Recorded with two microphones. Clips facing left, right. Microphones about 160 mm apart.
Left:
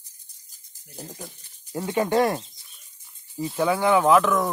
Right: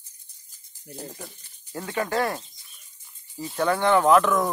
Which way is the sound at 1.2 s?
15° left (ahead or behind).